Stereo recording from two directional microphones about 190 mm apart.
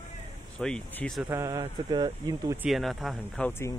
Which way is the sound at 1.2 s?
20° right (ahead or behind).